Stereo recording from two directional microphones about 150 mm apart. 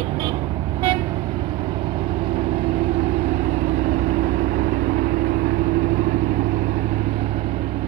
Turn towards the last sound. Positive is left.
turn(degrees=-60)  # may be behind; listen again after turning